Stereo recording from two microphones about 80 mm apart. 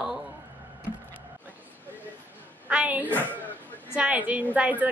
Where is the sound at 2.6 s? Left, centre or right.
Centre.